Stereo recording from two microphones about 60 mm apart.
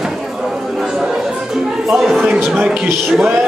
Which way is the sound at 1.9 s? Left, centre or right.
Centre.